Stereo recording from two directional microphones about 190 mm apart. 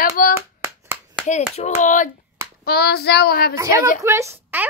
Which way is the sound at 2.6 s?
55° left (ahead or behind).